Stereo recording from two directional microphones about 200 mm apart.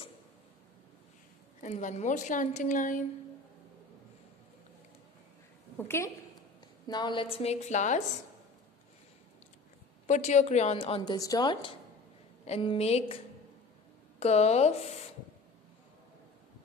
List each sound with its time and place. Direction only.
1.6 s a woman's voice: 35° left (ahead or behind)
5.8 s a woman's voice: 10° left (ahead or behind)
6.9 s a woman's voice: 20° left (ahead or behind)
10.0 s a woman's voice: 35° left (ahead or behind)
14.2 s a woman's voice: 30° left (ahead or behind)